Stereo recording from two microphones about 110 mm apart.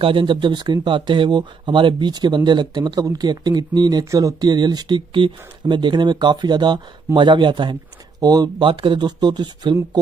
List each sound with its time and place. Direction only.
0.0 s speech: 50° right (ahead or behind)
4.0 s speech: 30° right (ahead or behind)